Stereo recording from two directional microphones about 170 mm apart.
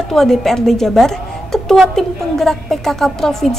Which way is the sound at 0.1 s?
Centre (ahead or behind).